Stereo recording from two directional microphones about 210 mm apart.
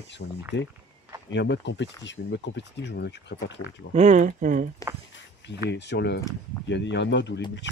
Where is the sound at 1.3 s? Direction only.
55° left (ahead or behind).